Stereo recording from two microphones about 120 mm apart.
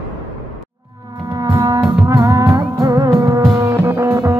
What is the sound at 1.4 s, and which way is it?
Music, 35° right (ahead or behind).